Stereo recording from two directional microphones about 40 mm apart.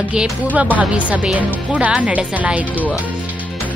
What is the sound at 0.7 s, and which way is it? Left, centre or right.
A woman's voice, right.